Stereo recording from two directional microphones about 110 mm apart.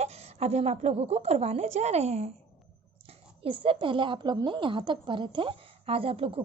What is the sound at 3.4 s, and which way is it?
A woman's voice, 55° right (ahead or behind).